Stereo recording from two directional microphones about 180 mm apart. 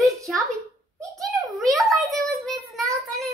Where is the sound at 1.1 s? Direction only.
Centre (ahead or behind).